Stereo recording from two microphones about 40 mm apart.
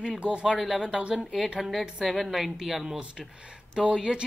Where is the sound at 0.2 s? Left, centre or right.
Right.